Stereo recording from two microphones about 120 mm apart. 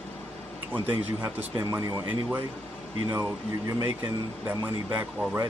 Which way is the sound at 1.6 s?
30° right (ahead or behind).